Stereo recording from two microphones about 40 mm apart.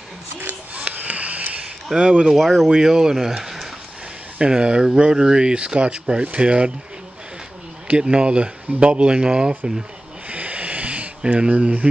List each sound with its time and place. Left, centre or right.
0.9 s a sound: right
2.0 s speech: right
2.3 s speech: centre
2.7 s speech: centre
4.4 s speech: right
7.9 s speech: right
10.3 s a sound: right